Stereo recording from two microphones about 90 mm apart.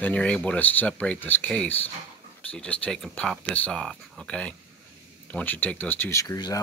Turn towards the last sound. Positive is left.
turn(degrees=35)  # may be behind; listen again after turning